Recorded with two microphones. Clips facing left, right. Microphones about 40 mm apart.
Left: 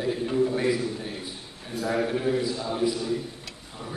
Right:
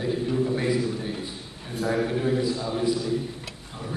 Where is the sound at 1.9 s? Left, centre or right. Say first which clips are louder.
Even; centre.